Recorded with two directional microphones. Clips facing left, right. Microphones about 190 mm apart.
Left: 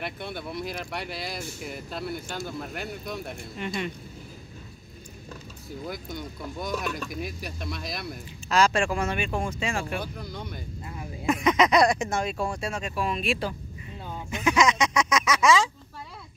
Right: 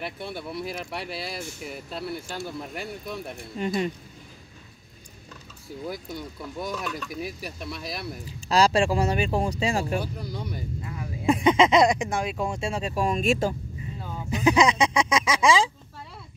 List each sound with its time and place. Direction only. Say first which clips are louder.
0.0 s speech: right 1 dB; 5° right (ahead or behind)
3.5 s speech: right 5 dB; 35° right (ahead or behind)
5.9 s speech: right 2 dB; 5° right (ahead or behind)
8.0 s speech: right 1 dB; 35° right (ahead or behind)
10.1 s speech: right 3 dB; 10° right (ahead or behind)
11.2 s speech: right 3 dB; 30° right (ahead or behind)